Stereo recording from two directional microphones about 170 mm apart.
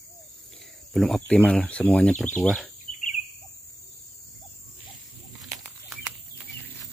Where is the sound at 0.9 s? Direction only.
Centre (ahead or behind).